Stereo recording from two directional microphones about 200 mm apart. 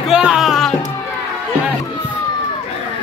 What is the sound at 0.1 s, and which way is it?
Music, 5° right (ahead or behind).